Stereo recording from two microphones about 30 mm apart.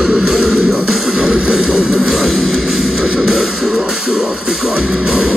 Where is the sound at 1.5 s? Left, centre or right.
Centre.